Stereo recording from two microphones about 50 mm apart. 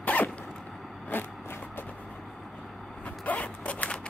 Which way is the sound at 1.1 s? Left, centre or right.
Left.